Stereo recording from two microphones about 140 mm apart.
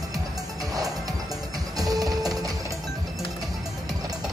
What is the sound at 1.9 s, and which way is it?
Music, 25° right (ahead or behind).